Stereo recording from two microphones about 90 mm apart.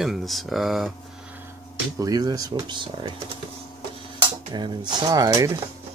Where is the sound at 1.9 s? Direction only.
45° right (ahead or behind); by 3.2 s 60° right (ahead or behind).